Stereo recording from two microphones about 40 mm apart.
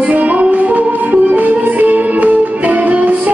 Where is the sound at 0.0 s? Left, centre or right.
Right.